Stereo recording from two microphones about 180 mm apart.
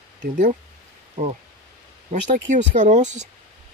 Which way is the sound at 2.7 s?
45° right (ahead or behind).